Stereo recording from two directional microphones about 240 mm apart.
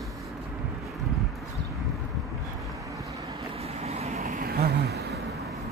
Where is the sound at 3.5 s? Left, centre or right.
Right.